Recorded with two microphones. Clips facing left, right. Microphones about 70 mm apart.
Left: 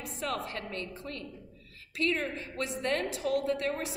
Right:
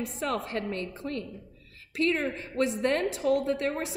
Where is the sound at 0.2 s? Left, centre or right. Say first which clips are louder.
Right 3 dB; right.